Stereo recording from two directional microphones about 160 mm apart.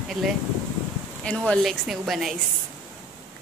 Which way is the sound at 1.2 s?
5° left (ahead or behind).